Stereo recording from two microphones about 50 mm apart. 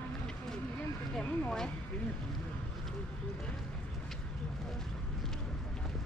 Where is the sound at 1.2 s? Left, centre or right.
Centre.